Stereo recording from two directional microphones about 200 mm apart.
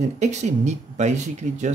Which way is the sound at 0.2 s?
35° right (ahead or behind).